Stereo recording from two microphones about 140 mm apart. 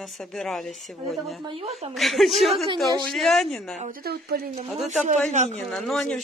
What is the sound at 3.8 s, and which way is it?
Speech, 80° right.